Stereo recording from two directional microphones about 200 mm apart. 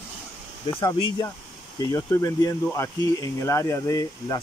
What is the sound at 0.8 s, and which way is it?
Speech, 20° left (ahead or behind).